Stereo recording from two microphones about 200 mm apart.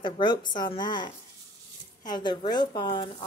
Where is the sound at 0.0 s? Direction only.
25° left (ahead or behind).